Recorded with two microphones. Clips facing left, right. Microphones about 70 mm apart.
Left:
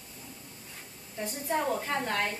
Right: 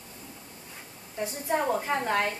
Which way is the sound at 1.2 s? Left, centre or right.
Centre.